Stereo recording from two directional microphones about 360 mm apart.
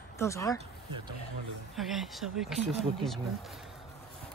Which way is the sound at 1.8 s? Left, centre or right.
Centre.